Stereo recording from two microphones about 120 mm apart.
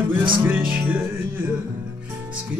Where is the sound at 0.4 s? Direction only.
15° right (ahead or behind).